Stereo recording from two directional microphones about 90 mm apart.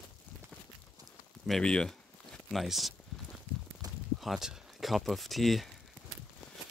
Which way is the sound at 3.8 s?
45° right (ahead or behind).